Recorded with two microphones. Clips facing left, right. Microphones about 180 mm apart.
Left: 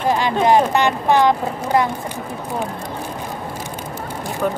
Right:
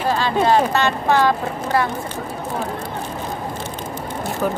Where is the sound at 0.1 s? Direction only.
15° left (ahead or behind).